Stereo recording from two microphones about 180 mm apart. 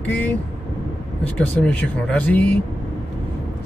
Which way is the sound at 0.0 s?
10° left (ahead or behind).